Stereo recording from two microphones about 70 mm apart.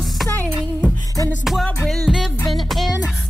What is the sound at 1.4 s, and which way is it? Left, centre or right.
Music, centre.